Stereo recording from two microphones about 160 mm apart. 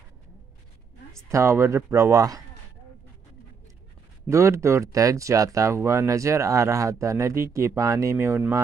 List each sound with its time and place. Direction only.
1.3 s speech: 15° right (ahead or behind)
4.3 s speech: 20° right (ahead or behind)